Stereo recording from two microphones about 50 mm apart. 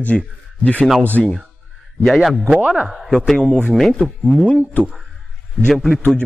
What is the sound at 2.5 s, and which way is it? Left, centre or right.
Speech, right.